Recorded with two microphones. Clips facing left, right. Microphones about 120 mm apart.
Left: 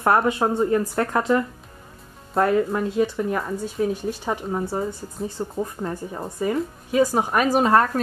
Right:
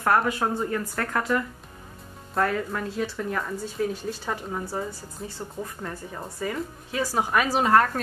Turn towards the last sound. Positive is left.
turn(degrees=25)  # may be behind; listen again after turning